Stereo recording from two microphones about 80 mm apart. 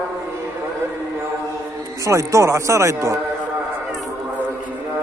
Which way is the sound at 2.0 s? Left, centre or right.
Right.